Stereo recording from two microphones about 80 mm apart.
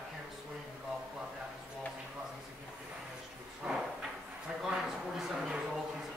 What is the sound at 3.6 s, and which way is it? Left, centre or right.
Drawer open or close, centre.